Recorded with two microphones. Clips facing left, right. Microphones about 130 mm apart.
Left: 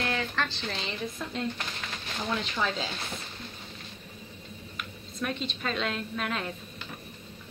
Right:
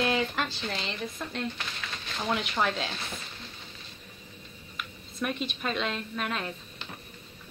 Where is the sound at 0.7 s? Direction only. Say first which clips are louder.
Even; centre (ahead or behind).